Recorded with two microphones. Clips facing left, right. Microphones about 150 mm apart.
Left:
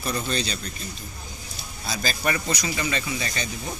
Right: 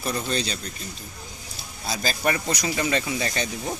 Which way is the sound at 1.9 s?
25° right (ahead or behind).